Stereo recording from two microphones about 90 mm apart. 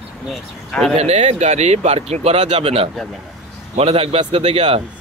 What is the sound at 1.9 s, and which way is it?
Speech, 90° right.